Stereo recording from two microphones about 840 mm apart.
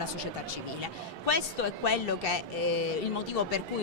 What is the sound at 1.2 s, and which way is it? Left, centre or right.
Speech, left.